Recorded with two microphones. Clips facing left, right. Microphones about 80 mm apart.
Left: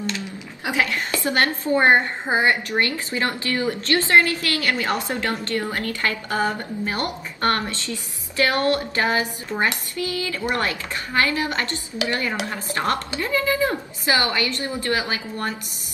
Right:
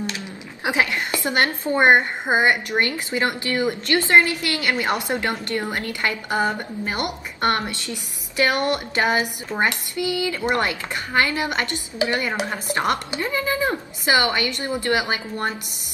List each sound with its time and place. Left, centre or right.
0.7 s a woman's voice: right